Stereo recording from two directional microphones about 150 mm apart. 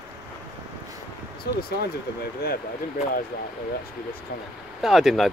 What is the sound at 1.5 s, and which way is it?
Speech, 90° left.